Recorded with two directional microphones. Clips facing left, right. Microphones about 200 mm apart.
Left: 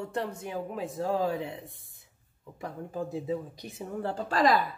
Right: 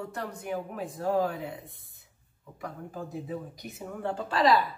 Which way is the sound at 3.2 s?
30° left (ahead or behind).